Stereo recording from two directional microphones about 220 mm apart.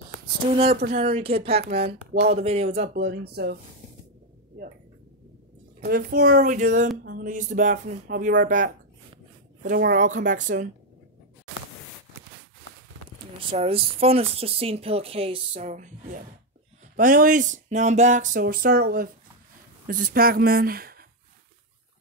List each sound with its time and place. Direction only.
1.1 s speech: 25° right (ahead or behind)
2.9 s speech: 50° right (ahead or behind)
5.9 s speech: 45° right (ahead or behind)
13.5 s speech: 25° right (ahead or behind); by 21.0 s 45° right (ahead or behind)